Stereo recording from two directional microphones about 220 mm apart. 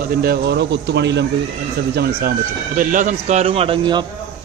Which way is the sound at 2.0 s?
40° right (ahead or behind).